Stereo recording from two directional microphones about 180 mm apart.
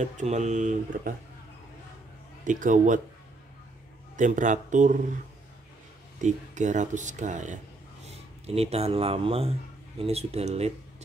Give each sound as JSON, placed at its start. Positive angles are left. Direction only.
{"t": 0.0, "sound": "speech", "side_deg": -40}
{"t": 2.4, "sound": "speech", "side_deg": -45}
{"t": 4.2, "sound": "speech", "side_deg": -45}
{"t": 6.2, "sound": "speech", "side_deg": -40}